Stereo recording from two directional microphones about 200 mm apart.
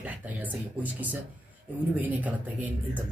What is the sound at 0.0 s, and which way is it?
Speech, 10° right (ahead or behind).